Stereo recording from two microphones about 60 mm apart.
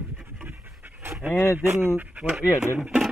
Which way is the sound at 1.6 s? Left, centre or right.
Right.